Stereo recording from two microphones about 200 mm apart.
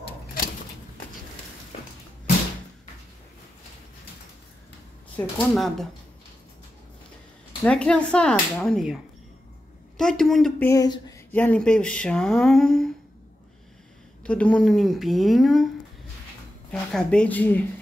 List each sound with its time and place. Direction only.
5.1 s speech: centre (ahead or behind)
7.6 s speech: 5° left (ahead or behind)
10.7 s speech: 20° left (ahead or behind); by 12.9 s 5° left (ahead or behind)
14.2 s speech: 5° left (ahead or behind)
16.9 s speech: 5° left (ahead or behind)